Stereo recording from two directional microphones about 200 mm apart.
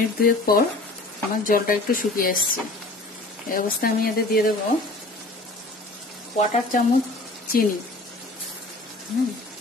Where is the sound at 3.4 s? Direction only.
45° left (ahead or behind).